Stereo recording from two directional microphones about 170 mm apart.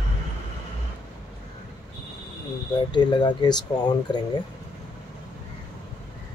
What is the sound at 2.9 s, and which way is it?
Speech, 25° left (ahead or behind).